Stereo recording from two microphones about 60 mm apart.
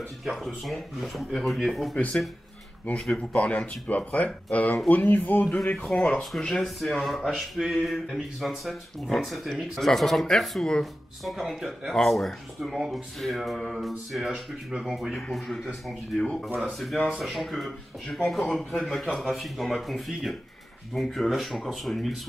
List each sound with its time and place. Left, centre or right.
0.2 s speech: centre
2.9 s speech: centre
6.3 s speech: centre
17.2 s speech: centre